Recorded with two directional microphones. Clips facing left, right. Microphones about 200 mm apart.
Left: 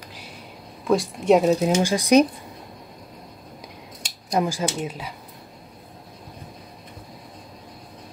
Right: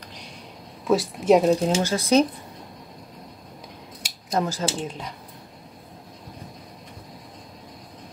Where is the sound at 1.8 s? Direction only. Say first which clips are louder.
Left 3 dB; 15° left (ahead or behind).